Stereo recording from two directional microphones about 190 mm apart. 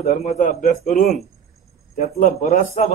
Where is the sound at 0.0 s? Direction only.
40° left (ahead or behind).